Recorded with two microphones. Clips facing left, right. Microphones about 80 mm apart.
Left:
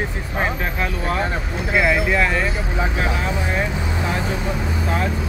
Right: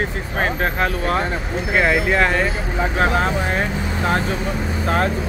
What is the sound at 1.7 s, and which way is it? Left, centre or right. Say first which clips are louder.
Speech: right 1 dB; right.